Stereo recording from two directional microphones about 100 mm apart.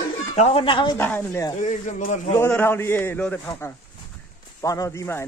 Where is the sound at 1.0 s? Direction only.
20° left (ahead or behind).